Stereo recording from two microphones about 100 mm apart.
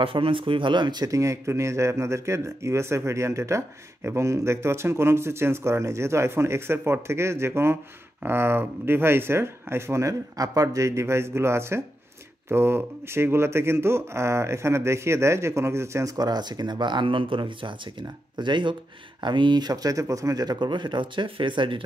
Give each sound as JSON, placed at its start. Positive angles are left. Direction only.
{"t": 0.0, "sound": "speech", "side_deg": -60}
{"t": 1.0, "sound": "speech", "side_deg": -30}